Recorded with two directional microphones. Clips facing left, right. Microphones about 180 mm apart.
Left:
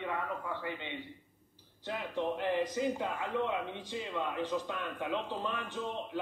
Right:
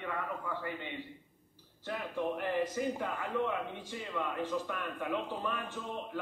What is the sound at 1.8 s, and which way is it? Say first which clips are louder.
A man's voice: left 1 dB; 20° left (ahead or behind).